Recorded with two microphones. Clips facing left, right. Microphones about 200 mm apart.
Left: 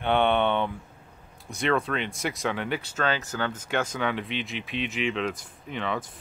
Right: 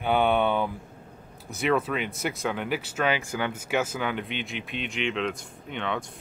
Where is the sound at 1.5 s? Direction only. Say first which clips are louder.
Right 1 dB; 5° right (ahead or behind).